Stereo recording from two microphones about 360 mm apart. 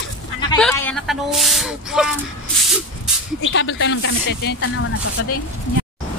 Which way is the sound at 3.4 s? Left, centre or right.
Left.